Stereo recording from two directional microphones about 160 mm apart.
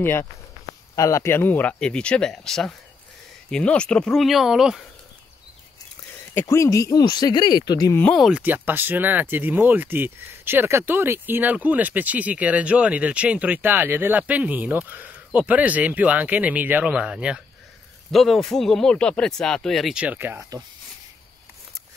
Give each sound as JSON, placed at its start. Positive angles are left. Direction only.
{"t": 0.0, "sound": "speech", "side_deg": 15}
{"t": 6.3, "sound": "speech", "side_deg": 20}
{"t": 8.0, "sound": "speech", "side_deg": 5}
{"t": 8.3, "sound": "speech", "side_deg": -10}